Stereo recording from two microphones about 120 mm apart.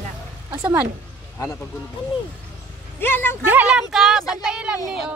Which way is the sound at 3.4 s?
10° right (ahead or behind).